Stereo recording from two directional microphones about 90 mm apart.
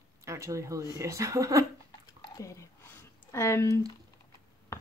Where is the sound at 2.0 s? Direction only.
40° left (ahead or behind).